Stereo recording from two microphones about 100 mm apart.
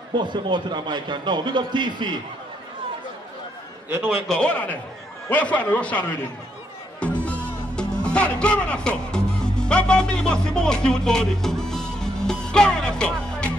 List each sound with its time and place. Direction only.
0.1 s a man's voice: 50° right (ahead or behind)
4.3 s speech: 10° left (ahead or behind)
7.0 s music: 15° left (ahead or behind)